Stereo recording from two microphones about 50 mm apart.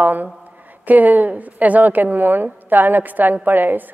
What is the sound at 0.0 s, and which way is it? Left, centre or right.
A woman's voice, right.